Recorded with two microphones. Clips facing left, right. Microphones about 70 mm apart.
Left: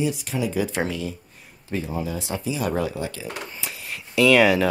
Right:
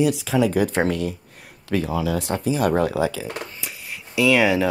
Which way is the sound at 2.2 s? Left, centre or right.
Right.